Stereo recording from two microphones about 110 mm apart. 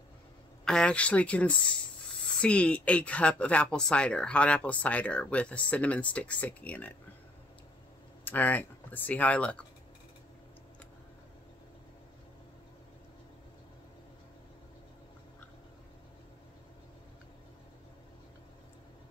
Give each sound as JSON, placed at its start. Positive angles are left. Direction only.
{"t": 0.7, "sound": "speech", "side_deg": 5}
{"t": 8.2, "sound": "speech", "side_deg": 15}